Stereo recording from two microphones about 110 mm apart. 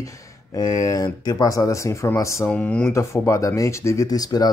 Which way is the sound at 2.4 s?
15° left (ahead or behind).